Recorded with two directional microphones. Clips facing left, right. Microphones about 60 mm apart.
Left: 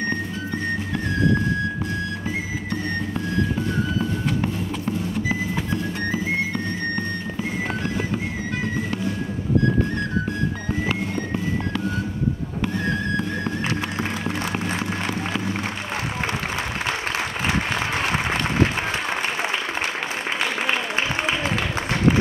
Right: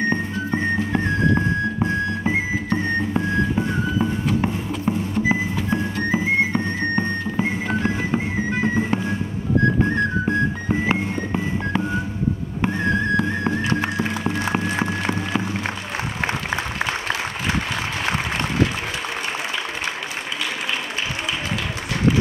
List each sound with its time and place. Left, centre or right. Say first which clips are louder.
0.1 s music: right 4 dB; right